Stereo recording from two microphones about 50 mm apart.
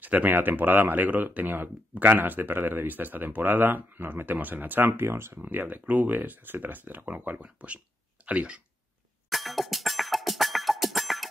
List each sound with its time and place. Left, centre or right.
0.0 s speech: right
5.4 s speech: right
9.3 s music: centre